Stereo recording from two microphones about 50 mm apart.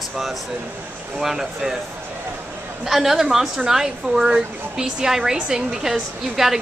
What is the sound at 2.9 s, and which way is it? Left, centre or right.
Speech, centre.